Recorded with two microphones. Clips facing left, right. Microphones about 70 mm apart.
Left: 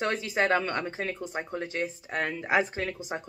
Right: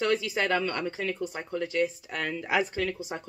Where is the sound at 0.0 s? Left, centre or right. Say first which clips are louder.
Even; left.